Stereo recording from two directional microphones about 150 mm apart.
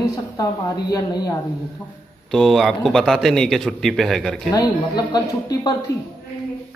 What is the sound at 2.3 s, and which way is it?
A man's voice, centre (ahead or behind).